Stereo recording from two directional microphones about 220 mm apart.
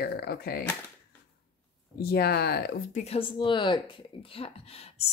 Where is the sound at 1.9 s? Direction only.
45° left (ahead or behind).